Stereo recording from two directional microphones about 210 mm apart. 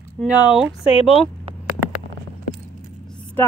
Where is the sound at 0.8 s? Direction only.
25° left (ahead or behind).